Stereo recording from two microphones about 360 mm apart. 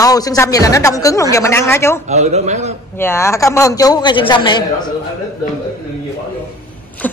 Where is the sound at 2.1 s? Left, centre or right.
Centre.